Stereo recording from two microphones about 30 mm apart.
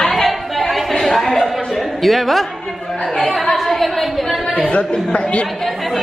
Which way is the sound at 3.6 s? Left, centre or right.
Centre.